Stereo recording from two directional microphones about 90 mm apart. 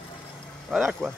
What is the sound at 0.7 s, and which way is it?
Speech, 5° right (ahead or behind).